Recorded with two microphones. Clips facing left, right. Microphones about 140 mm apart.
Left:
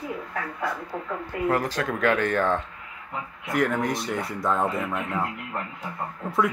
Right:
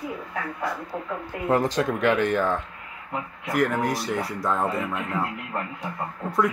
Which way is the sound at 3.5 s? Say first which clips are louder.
Right 1 dB; centre (ahead or behind).